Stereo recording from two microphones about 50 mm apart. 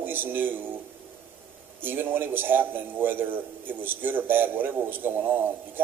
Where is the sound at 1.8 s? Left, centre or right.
Right.